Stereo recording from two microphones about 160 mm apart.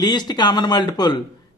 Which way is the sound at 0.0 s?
25° left (ahead or behind).